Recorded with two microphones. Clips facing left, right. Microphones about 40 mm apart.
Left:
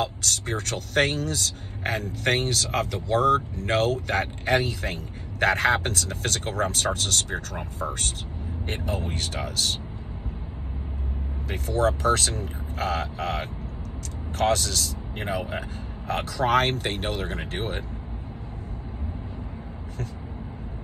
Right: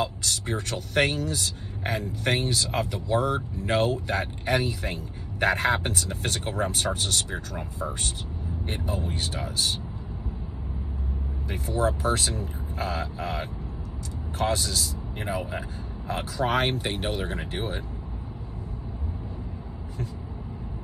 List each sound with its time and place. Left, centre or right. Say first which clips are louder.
0.0 s speech: left 1 dB; left
11.4 s speech: left 2 dB; left
16.1 s speech: left 3 dB; left